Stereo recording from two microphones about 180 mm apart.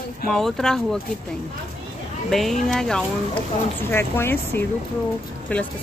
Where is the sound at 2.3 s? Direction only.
Centre (ahead or behind).